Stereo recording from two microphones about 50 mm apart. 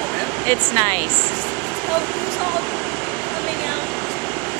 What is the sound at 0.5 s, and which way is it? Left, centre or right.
Speech, left.